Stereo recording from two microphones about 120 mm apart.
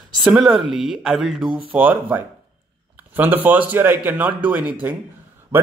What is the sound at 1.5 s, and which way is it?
Speech, 50° right (ahead or behind).